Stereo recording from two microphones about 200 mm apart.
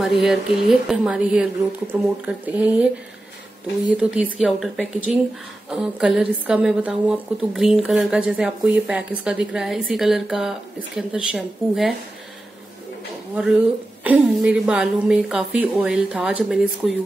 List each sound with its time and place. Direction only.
0.2 s a woman's voice: centre (ahead or behind)
3.9 s a woman's voice: 5° right (ahead or behind)
14.0 s a woman's voice: 5° right (ahead or behind)